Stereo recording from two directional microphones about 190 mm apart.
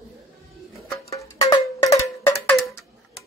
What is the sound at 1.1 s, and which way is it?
Cowbell, 15° left (ahead or behind).